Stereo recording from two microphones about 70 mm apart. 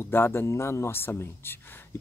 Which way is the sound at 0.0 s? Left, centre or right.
Left.